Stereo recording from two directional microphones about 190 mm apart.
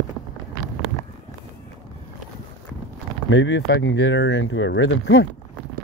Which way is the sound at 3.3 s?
75° left (ahead or behind).